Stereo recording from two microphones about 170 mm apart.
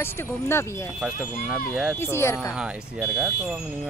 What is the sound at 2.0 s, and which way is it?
Speech, 15° left (ahead or behind).